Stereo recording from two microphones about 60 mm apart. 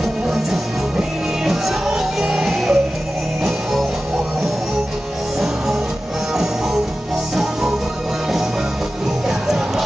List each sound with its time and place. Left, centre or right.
0.9 s music: centre